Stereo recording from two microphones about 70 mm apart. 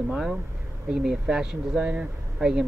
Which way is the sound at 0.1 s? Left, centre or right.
Centre.